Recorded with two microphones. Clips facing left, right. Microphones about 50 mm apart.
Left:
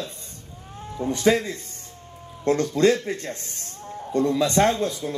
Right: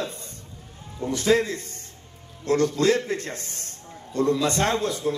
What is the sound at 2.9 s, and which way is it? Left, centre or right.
A man's voice, right.